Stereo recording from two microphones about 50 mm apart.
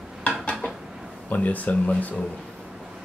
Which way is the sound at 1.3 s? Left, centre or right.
Left.